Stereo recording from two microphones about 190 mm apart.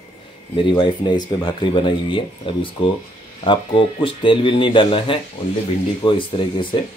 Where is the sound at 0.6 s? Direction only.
25° left (ahead or behind).